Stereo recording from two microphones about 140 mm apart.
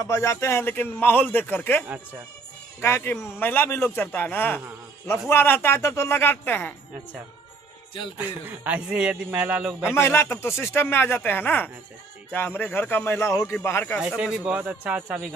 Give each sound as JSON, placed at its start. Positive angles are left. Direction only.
{"t": 0.0, "sound": "a man's voice", "side_deg": 20}
{"t": 8.2, "sound": "speech", "side_deg": -10}
{"t": 9.7, "sound": "speech", "side_deg": 0}
{"t": 9.9, "sound": "a man's voice", "side_deg": 15}
{"t": 14.0, "sound": "speech", "side_deg": -5}